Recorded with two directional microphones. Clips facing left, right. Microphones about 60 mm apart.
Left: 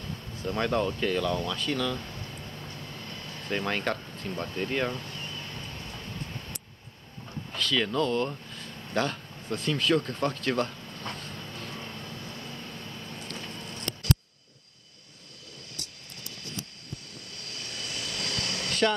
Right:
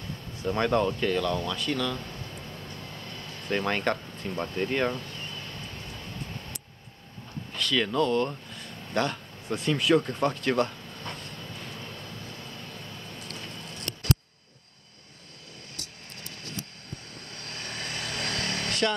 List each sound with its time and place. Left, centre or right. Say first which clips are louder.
0.4 s speech: right 3 dB; centre
3.4 s speech: right 2 dB; centre
7.5 s a sound: right 1 dB; centre
17.5 s vehicle: right 3 dB; right
18.7 s vehicle: left 2 dB; centre